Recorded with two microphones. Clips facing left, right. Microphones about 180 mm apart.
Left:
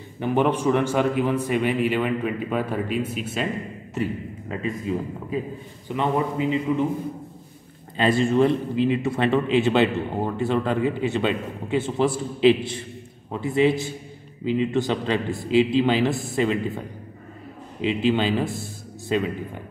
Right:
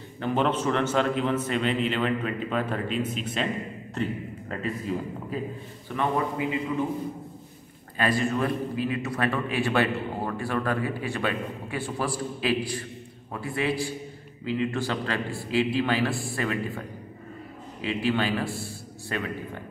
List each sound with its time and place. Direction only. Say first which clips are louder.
0.2 s a man's voice: left 4 dB; 15° left (ahead or behind)
5.9 s a man's voice: left 3 dB; 20° left (ahead or behind)
8.0 s a man's voice: left 6 dB; 25° left (ahead or behind)
17.8 s a man's voice: left 5 dB; 20° left (ahead or behind)